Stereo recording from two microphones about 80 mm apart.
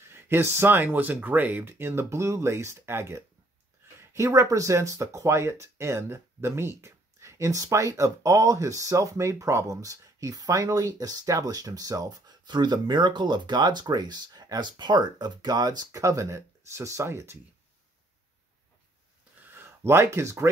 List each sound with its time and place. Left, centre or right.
0.0 s speech: right
19.5 s speech: right